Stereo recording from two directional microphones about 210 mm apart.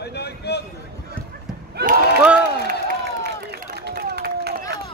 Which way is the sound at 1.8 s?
50° right (ahead or behind).